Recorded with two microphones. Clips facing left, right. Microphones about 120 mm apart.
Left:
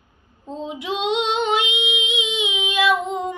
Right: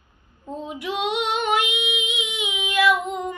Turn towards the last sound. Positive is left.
turn(degrees=20)  # may be behind; listen again after turning